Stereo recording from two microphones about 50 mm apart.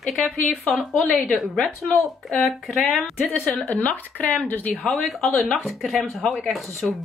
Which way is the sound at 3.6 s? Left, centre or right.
Left.